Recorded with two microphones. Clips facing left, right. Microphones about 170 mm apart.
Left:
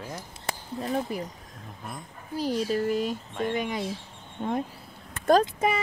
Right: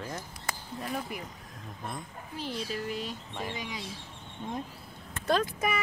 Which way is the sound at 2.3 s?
40° left (ahead or behind).